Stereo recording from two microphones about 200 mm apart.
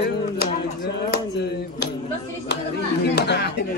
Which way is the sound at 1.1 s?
55° left (ahead or behind).